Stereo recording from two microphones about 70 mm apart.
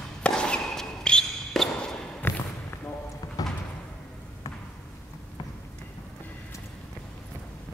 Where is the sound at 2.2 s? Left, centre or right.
Left.